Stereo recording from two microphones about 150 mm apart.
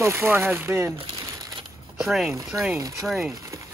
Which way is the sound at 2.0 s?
5° right (ahead or behind).